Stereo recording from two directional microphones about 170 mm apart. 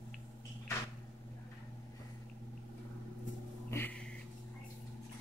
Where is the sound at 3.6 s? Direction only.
10° left (ahead or behind).